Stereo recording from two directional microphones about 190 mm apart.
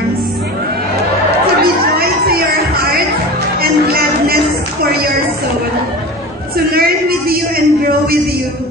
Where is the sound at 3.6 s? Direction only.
50° right (ahead or behind).